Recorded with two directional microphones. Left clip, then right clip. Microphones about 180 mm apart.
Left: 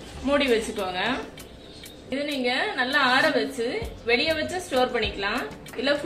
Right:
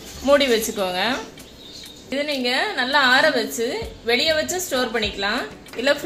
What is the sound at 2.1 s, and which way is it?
A woman's voice, 50° right (ahead or behind).